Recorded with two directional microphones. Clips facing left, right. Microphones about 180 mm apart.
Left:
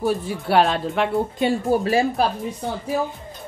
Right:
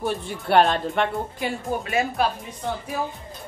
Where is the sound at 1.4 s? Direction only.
30° left (ahead or behind).